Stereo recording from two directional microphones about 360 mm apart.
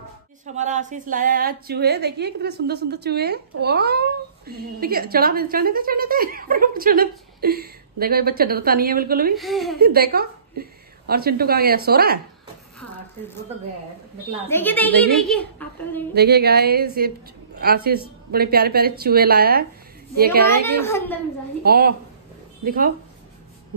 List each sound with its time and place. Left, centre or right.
0.5 s a woman's voice: centre
9.4 s a woman's voice: centre
9.8 s a woman's voice: right
14.5 s a woman's voice: centre
16.2 s a woman's voice: right
20.6 s a woman's voice: centre
21.6 s a woman's voice: right